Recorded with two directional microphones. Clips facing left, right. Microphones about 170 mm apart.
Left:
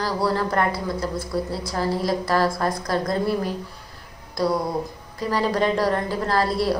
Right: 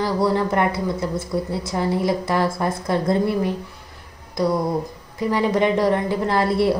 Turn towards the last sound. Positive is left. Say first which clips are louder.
# right 2 dB
turn(degrees=-20)  # may be behind; listen again after turning